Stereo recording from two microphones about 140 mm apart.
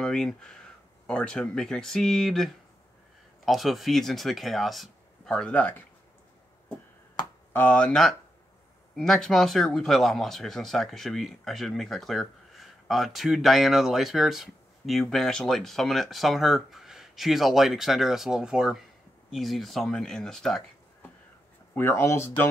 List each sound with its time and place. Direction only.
0.0 s speech: 5° left (ahead or behind)
7.5 s speech: 10° left (ahead or behind)
21.7 s speech: 15° left (ahead or behind)